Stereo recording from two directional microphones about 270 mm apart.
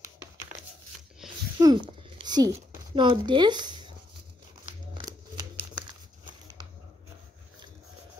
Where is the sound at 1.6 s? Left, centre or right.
Centre.